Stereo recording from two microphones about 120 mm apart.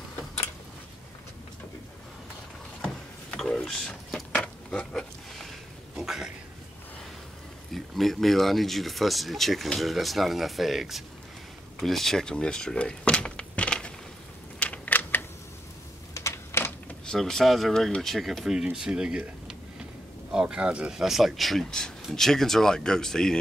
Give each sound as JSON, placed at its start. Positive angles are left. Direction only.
{"t": 3.3, "sound": "a sound", "side_deg": 5}
{"t": 5.9, "sound": "speech", "side_deg": -5}
{"t": 7.7, "sound": "speech", "side_deg": 0}
{"t": 14.6, "sound": "typing", "side_deg": 15}
{"t": 16.2, "sound": "a sound", "side_deg": 20}
{"t": 17.0, "sound": "speech", "side_deg": 5}